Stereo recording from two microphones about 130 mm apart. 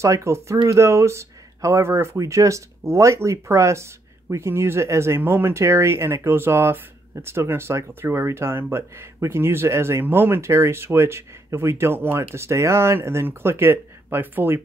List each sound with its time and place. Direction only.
0.0 s speech: 20° right (ahead or behind)